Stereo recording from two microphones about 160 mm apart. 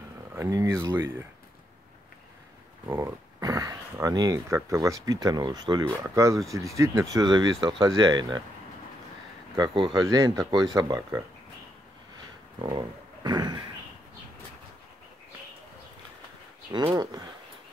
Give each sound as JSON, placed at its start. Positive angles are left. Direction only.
{"t": 0.3, "sound": "speech", "side_deg": -20}
{"t": 2.9, "sound": "a sound", "side_deg": -20}
{"t": 4.6, "sound": "speech", "side_deg": -20}
{"t": 9.6, "sound": "speech", "side_deg": -30}
{"t": 12.6, "sound": "speech", "side_deg": -25}
{"t": 16.9, "sound": "a sound", "side_deg": -25}